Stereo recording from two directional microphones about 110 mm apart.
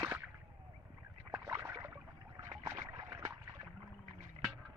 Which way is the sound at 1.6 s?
20° right (ahead or behind).